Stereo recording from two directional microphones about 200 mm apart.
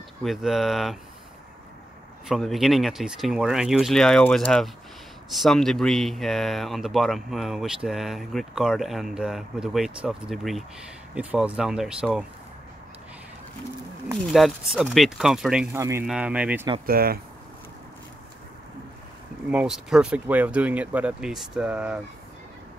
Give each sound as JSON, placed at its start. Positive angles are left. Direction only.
{"t": 0.2, "sound": "speech", "side_deg": 0}
{"t": 2.2, "sound": "speech", "side_deg": 0}
{"t": 14.3, "sound": "speech", "side_deg": 0}
{"t": 16.8, "sound": "speech", "side_deg": -50}
{"t": 19.5, "sound": "speech", "side_deg": -5}